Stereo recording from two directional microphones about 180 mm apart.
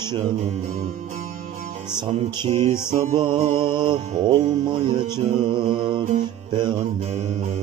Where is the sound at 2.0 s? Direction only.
25° right (ahead or behind).